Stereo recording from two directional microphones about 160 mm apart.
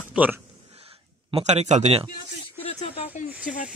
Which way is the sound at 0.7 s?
40° right (ahead or behind).